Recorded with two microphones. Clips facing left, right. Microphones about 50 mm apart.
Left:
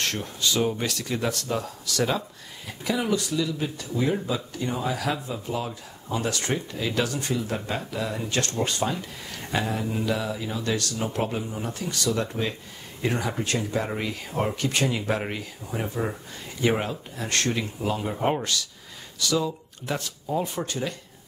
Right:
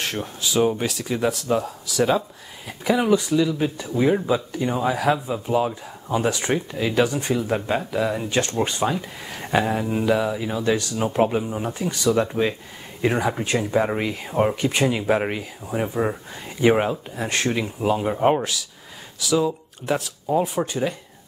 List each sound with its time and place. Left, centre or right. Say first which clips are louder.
0.0 s speech: right 1 dB; centre
2.9 s speech: right 7 dB; right